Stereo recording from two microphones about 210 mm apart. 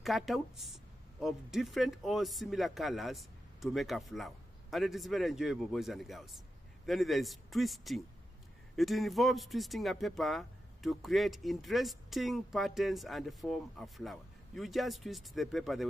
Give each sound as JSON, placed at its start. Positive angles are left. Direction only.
{"t": 0.0, "sound": "speech", "side_deg": 0}